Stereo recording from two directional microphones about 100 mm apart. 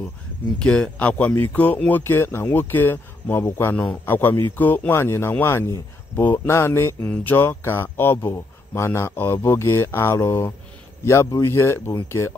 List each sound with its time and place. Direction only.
0.6 s speech: 10° left (ahead or behind); by 12.4 s 25° left (ahead or behind)